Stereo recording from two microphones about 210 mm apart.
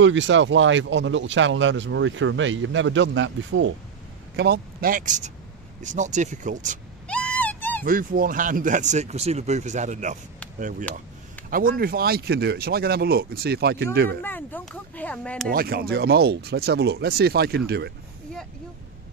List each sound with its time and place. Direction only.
0.0 s speech: 60° right (ahead or behind)
4.4 s speech: 50° right (ahead or behind)
7.1 s a sound: 5° left (ahead or behind)
7.8 s speech: 40° right (ahead or behind)
14.2 s speech: 10° left (ahead or behind)
15.5 s speech: 45° right (ahead or behind)